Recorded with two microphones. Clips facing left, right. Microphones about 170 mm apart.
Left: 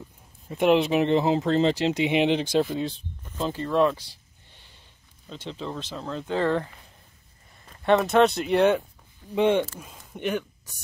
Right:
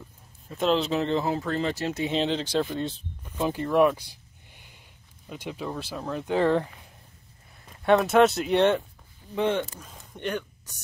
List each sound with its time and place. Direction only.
0.5 s speech: 15° left (ahead or behind)
1.8 s speech: 15° left (ahead or behind)
2.7 s speech: centre (ahead or behind)
3.3 s a sound: 15° right (ahead or behind)
5.2 s speech: 10° right (ahead or behind)
7.6 s speech: 5° right (ahead or behind)
9.3 s speech: 15° left (ahead or behind)
9.8 s a sound: 10° left (ahead or behind)